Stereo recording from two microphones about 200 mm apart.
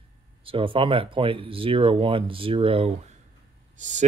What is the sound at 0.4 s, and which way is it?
Speech, 25° right (ahead or behind).